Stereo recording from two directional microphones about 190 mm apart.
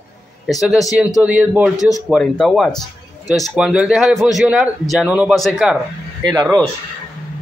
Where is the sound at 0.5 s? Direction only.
Centre (ahead or behind).